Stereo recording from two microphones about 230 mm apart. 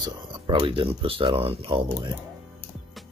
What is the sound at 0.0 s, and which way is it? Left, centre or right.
Speech, centre.